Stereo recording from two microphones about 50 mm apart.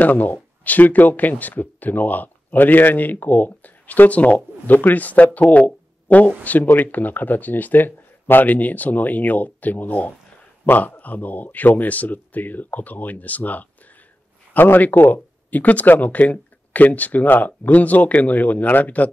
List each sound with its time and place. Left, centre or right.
0.0 s speech: left